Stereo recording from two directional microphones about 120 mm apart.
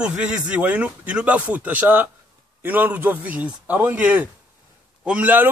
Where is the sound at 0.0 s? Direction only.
10° right (ahead or behind).